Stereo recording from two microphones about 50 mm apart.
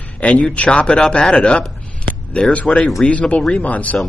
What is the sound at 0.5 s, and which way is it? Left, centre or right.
Speech, left.